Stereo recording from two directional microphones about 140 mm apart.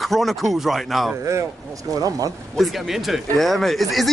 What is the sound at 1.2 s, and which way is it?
Speech, 20° right (ahead or behind).